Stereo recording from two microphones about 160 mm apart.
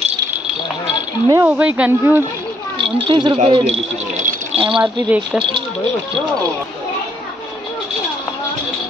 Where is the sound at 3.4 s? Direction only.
40° right (ahead or behind); by 4.5 s 55° right (ahead or behind).